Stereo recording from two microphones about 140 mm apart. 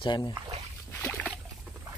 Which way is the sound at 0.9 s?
15° left (ahead or behind).